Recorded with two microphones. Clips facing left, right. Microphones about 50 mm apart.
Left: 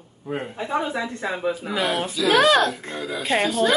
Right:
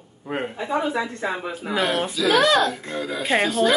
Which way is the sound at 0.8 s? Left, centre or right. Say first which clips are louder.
Right 3 dB; centre.